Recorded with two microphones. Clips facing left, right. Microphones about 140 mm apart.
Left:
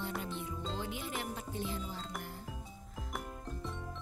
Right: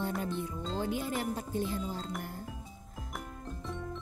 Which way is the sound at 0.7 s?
40° right (ahead or behind).